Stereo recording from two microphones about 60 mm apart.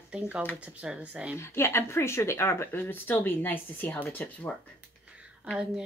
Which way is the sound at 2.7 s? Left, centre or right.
Left.